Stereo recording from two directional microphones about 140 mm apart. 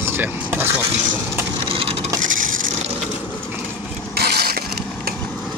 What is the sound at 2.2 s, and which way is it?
Wood, 70° right (ahead or behind).